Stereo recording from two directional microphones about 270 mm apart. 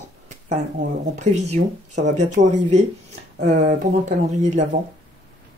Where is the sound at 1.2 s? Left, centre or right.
Right.